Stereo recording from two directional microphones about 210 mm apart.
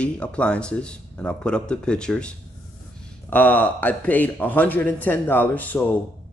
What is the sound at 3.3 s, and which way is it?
Speech, 10° left (ahead or behind).